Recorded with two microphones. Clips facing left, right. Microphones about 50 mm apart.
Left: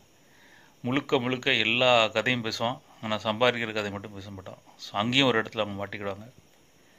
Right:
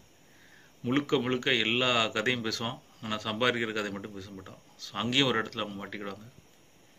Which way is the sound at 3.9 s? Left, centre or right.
Left.